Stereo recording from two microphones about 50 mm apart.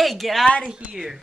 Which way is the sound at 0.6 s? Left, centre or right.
Centre.